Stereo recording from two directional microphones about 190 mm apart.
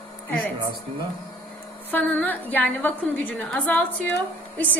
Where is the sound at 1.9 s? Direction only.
10° left (ahead or behind).